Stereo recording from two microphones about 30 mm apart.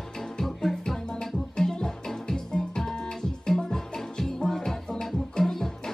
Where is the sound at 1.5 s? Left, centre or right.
Left.